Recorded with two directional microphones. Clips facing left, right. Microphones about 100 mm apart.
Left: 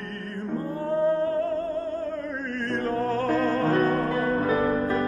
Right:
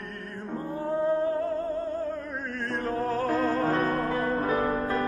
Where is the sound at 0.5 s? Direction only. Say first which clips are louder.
Left 2 dB; 10° right (ahead or behind).